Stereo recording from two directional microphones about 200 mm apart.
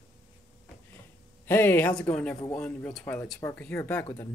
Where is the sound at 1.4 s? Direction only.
10° left (ahead or behind).